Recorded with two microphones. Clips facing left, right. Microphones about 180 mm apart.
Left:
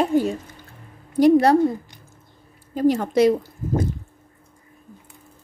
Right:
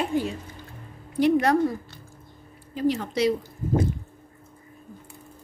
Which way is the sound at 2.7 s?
45° left (ahead or behind).